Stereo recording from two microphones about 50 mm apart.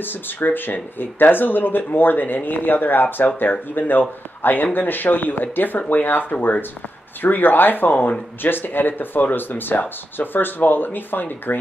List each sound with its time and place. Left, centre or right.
0.4 s speech: left